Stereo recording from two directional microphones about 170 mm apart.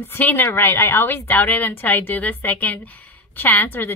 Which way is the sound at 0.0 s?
10° left (ahead or behind).